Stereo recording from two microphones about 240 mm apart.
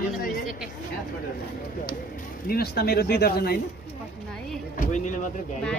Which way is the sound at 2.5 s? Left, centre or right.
Left.